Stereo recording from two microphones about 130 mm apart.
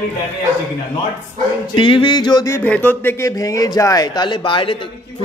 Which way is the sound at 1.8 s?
40° left (ahead or behind).